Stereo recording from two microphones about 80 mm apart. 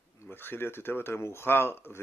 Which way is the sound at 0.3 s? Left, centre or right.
Left.